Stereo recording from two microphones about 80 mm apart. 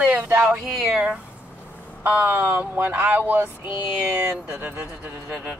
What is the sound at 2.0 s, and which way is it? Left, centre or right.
Speech, right.